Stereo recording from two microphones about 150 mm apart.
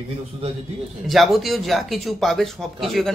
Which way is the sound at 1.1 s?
Centre (ahead or behind).